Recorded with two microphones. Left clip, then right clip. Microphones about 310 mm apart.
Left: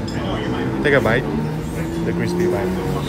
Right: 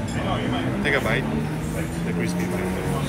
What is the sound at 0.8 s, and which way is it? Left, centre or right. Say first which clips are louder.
Speech: left 7 dB; left.